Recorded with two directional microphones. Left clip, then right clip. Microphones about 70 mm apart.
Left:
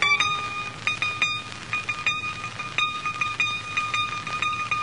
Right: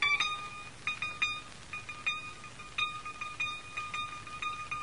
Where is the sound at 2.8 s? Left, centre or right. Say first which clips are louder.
Left 10 dB; left.